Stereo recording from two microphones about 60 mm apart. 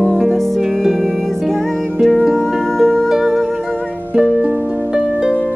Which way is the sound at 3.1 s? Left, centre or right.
Centre.